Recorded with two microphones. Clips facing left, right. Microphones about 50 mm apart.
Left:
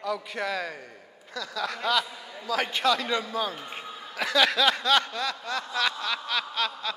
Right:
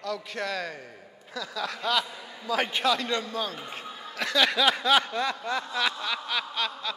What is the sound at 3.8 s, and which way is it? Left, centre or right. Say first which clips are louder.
Snicker: left 2 dB; centre.